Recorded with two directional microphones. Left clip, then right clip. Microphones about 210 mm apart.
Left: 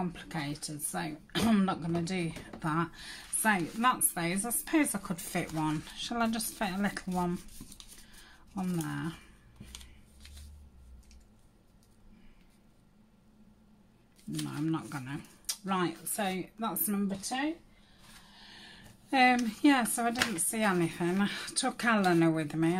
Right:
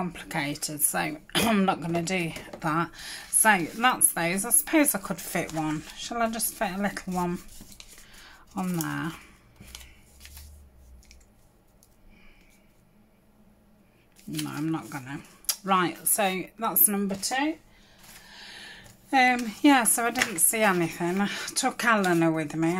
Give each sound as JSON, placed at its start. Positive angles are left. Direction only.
{"t": 0.0, "sound": "speech", "side_deg": -5}
{"t": 8.2, "sound": "a sound", "side_deg": -15}
{"t": 8.8, "sound": "speech", "side_deg": -15}
{"t": 14.3, "sound": "speech", "side_deg": -10}
{"t": 15.4, "sound": "speech", "side_deg": -15}
{"t": 18.3, "sound": "speech", "side_deg": -15}